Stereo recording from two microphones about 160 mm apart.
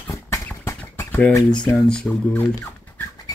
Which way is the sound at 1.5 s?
5° left (ahead or behind).